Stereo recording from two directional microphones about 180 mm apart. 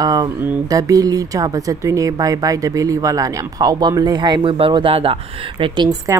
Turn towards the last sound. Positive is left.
turn(degrees=-25)  # may be behind; listen again after turning